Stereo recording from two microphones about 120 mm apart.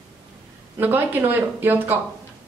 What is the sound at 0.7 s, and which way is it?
A woman's voice, 15° right (ahead or behind).